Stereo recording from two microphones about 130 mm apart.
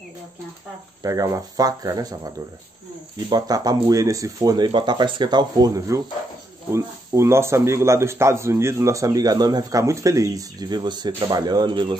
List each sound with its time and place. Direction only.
1.0 s a man's voice: 25° right (ahead or behind)
3.3 s a man's voice: 30° right (ahead or behind)